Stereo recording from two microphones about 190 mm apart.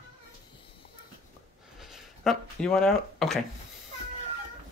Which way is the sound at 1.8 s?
Centre (ahead or behind).